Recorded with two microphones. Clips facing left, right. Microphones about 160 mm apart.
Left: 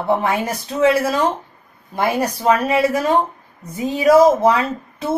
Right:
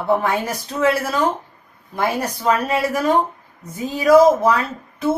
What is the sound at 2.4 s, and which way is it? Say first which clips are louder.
Speech: left 3 dB; 20° left (ahead or behind).